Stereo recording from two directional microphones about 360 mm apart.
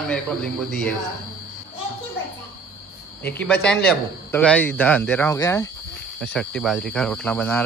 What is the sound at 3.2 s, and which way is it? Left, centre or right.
A man's voice, centre.